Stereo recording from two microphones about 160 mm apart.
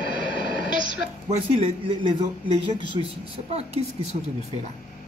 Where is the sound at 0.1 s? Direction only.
30° left (ahead or behind).